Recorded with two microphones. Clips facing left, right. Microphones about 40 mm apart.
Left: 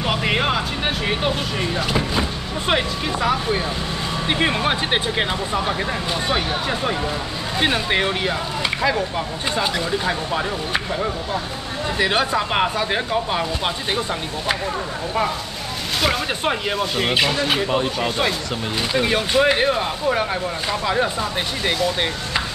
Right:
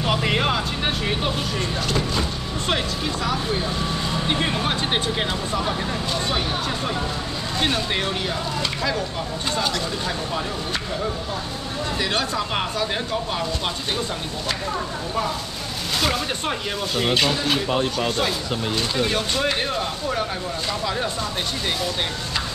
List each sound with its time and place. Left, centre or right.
0.0 s speech: centre
16.0 s speech: centre